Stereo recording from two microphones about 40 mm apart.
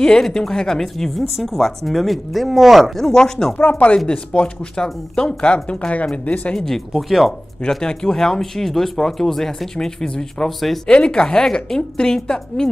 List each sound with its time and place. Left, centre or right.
0.0 s a woman's voice: centre
3.0 s speech: centre
3.5 s chopping: left
4.1 s a woman's voice: left
6.2 s chopping: left
6.5 s speech: centre
6.9 s a woman's voice: centre
7.7 s a woman's voice: centre